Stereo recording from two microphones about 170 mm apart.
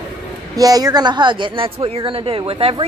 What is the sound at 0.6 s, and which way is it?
Speech, 20° right (ahead or behind).